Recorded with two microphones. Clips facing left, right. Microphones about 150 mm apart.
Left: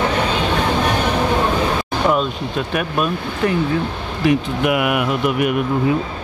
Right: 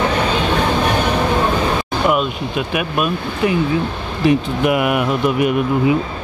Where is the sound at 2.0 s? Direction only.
10° right (ahead or behind).